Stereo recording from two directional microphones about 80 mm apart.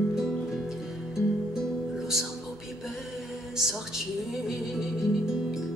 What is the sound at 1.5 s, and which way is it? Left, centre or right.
Music, centre.